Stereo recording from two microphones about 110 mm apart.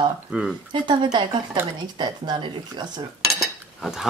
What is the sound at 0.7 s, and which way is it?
Speech, 45° right (ahead or behind).